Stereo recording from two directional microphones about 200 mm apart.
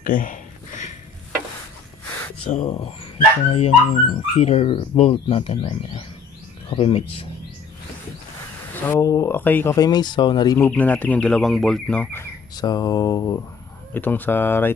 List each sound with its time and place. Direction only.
0.0 s a sound: 40° left (ahead or behind)
2.5 s speech: 35° left (ahead or behind)
8.8 s speech: 15° left (ahead or behind)
10.7 s speech: 10° left (ahead or behind)